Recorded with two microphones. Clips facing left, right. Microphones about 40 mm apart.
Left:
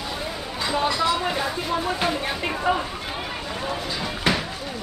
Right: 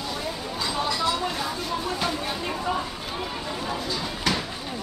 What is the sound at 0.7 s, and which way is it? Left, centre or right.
Speech, left.